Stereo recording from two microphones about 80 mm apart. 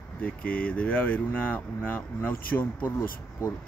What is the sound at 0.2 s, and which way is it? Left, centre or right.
Speech, centre.